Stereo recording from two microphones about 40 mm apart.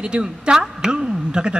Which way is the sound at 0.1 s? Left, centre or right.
Right.